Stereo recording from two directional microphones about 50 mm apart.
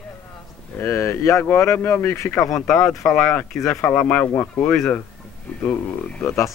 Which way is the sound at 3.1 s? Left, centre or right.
Left.